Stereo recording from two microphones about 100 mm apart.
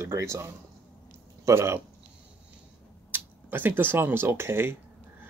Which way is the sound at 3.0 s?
20° right (ahead or behind).